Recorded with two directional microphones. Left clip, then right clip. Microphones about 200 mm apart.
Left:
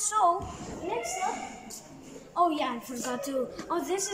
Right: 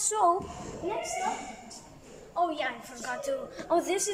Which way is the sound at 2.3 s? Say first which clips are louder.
Left 3 dB; 15° left (ahead or behind).